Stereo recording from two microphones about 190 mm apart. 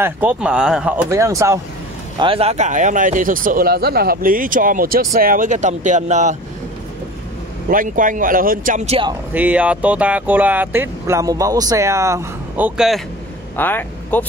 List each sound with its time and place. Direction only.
0.0 s speech: 5° right (ahead or behind)
2.1 s speech: 30° right (ahead or behind)
7.7 s speech: 45° right (ahead or behind)
9.3 s speech: 5° right (ahead or behind)
13.6 s speech: 10° left (ahead or behind)